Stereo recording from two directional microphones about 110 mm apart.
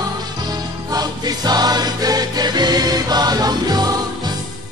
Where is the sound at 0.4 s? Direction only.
35° right (ahead or behind).